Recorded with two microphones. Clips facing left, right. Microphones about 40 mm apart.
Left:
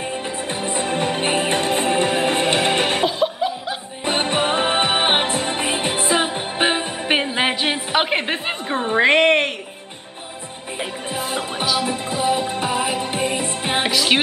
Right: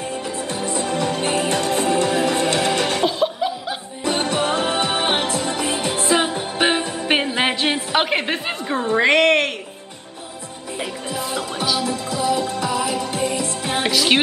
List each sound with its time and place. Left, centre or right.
0.1 s music: left
3.1 s chuckle: centre
4.0 s music: left
6.0 s music: centre
6.6 s music: left
7.1 s a sound: centre
10.8 s music: left
13.8 s music: centre